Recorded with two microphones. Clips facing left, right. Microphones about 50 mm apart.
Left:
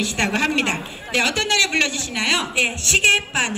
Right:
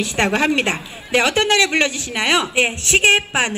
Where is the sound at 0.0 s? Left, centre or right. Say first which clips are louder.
Right 3 dB; right.